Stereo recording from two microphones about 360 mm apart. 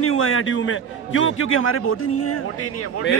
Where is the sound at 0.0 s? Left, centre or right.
Left.